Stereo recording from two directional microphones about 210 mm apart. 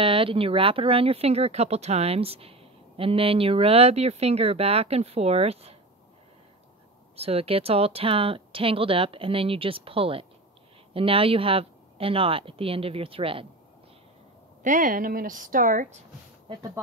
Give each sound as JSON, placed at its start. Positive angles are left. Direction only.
{"t": 0.0, "sound": "speech", "side_deg": -25}
{"t": 7.2, "sound": "speech", "side_deg": -30}
{"t": 14.6, "sound": "speech", "side_deg": -40}
{"t": 16.4, "sound": "speech", "side_deg": -15}